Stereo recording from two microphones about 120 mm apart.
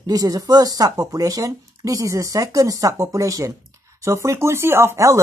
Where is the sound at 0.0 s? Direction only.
30° right (ahead or behind).